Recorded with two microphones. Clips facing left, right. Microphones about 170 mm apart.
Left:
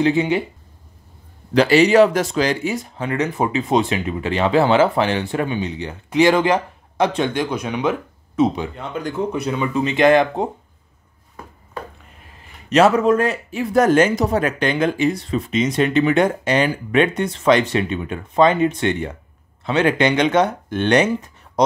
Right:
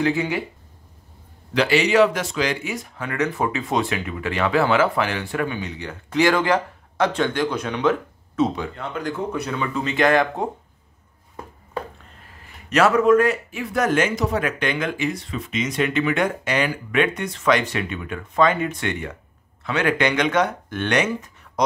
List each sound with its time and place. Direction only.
0.0 s speech: 20° left (ahead or behind)
1.5 s speech: 40° left (ahead or behind); by 10.5 s 20° left (ahead or behind)
12.6 s speech: 25° left (ahead or behind)